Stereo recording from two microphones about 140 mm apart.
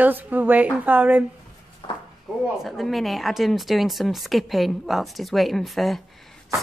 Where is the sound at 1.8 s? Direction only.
35° left (ahead or behind).